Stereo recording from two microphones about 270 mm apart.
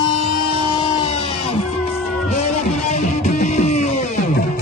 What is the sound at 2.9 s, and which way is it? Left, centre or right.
Music, left.